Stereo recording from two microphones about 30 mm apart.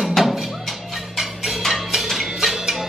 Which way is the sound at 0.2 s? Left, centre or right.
Centre.